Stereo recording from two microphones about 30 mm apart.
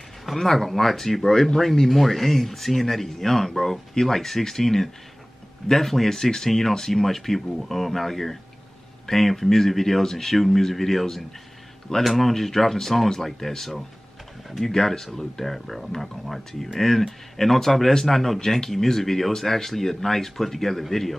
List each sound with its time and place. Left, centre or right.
0.2 s speech: centre
14.7 s speech: centre